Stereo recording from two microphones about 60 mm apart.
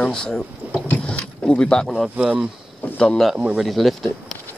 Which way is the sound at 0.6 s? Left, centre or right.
Right.